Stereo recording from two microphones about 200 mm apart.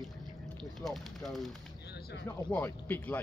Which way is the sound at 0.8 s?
Centre (ahead or behind).